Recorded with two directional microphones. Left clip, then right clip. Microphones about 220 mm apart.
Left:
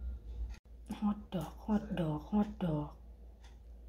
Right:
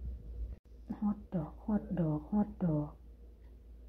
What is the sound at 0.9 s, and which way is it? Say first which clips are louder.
Speech: even; centre (ahead or behind).